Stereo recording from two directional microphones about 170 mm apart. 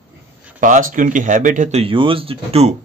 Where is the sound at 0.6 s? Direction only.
50° right (ahead or behind).